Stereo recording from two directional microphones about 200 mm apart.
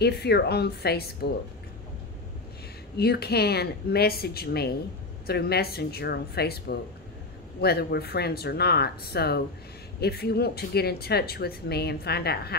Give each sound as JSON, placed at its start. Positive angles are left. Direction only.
{"t": 0.0, "sound": "speech", "side_deg": 55}
{"t": 3.0, "sound": "speech", "side_deg": 50}
{"t": 7.6, "sound": "speech", "side_deg": 50}